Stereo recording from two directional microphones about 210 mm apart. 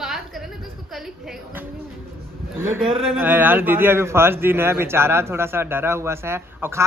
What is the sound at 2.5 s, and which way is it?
A man's voice, 10° right (ahead or behind).